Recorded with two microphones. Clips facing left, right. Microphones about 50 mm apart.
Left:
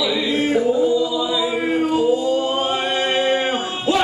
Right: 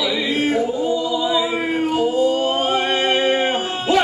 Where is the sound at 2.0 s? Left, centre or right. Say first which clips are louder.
Even; right.